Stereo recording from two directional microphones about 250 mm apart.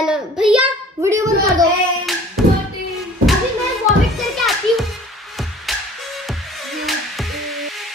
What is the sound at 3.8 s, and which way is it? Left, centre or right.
Music, centre.